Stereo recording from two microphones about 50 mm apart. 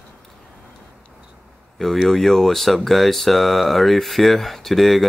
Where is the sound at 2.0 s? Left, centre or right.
Centre.